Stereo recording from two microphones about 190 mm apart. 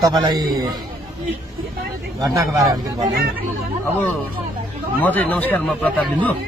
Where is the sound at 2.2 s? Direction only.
20° right (ahead or behind).